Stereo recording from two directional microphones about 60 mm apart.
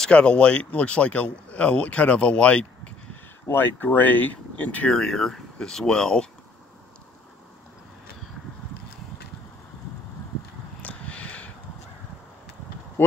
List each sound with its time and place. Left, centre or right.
0.0 s speech: centre
3.5 s speech: left
4.9 s speech: centre
10.8 s a sound: left